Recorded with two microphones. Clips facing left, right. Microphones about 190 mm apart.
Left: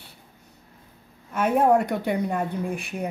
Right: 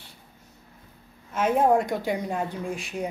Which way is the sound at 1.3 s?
60° left (ahead or behind).